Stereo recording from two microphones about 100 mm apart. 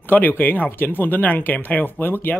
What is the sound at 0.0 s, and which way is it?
Speech, 15° left (ahead or behind).